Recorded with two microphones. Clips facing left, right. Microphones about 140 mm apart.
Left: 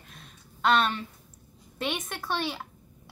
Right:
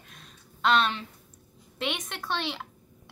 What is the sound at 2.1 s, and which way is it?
Speech, 10° left (ahead or behind).